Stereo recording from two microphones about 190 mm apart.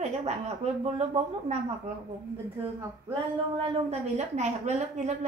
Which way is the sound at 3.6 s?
35° right (ahead or behind).